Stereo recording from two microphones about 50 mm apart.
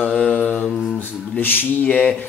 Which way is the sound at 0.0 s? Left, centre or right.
Left.